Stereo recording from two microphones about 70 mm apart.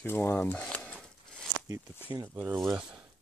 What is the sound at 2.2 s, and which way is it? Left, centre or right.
Speech, right.